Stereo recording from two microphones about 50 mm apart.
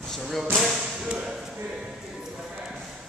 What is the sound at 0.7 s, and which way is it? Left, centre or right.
Speech, centre.